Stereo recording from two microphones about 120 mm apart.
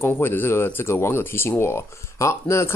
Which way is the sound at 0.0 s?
20° left (ahead or behind).